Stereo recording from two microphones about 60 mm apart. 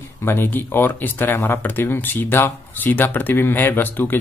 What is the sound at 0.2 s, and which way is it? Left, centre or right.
Speech, left.